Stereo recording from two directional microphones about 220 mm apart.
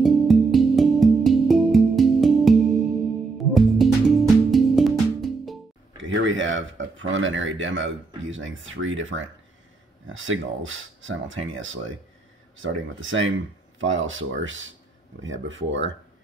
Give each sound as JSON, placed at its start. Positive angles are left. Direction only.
{"t": 0.0, "sound": "music", "side_deg": 0}
{"t": 5.9, "sound": "speech", "side_deg": -60}